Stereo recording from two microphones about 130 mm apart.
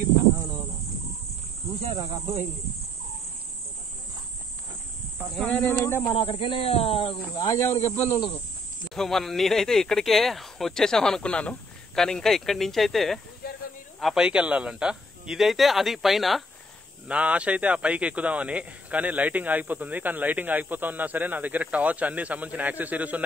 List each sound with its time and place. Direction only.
1.8 s speech: 55° right (ahead or behind)
5.3 s speech: 5° left (ahead or behind)
5.8 s speech: 20° left (ahead or behind)
6.1 s speech: 45° left (ahead or behind)
7.4 s speech: 20° left (ahead or behind)
8.9 s speech: centre (ahead or behind)